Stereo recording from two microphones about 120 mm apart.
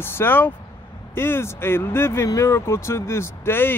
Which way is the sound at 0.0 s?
20° left (ahead or behind).